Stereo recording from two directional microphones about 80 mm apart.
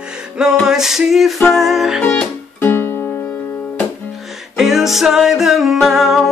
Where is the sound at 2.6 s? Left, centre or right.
Left.